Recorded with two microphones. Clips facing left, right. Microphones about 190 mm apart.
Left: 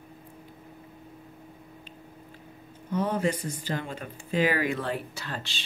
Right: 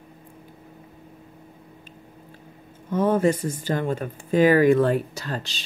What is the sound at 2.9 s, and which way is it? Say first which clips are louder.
Speech: right 7 dB; 50° right (ahead or behind).